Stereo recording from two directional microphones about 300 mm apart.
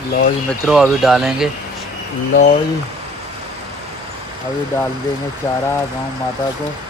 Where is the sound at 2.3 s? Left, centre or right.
Left.